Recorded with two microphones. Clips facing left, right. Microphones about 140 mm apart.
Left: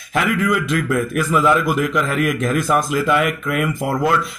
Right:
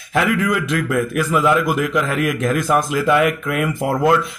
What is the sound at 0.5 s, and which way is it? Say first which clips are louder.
A man's voice: left 1 dB; 20° right (ahead or behind).